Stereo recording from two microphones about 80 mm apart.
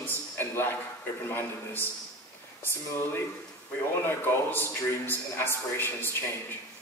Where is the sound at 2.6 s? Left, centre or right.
Left.